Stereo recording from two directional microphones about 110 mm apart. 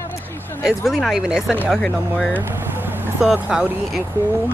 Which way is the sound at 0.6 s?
Centre (ahead or behind).